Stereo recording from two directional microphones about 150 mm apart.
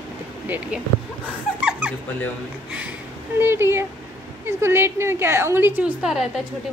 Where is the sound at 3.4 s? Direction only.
15° right (ahead or behind).